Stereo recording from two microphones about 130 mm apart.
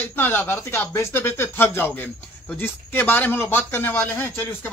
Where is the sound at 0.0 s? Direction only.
15° left (ahead or behind).